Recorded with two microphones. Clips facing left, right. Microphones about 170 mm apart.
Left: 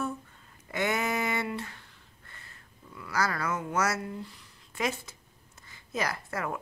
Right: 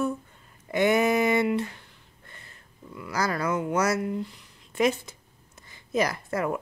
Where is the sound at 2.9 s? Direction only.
15° right (ahead or behind).